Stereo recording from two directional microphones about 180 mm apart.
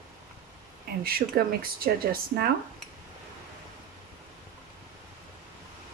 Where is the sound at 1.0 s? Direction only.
55° right (ahead or behind).